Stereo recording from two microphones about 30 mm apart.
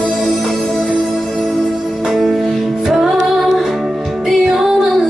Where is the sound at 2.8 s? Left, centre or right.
Centre.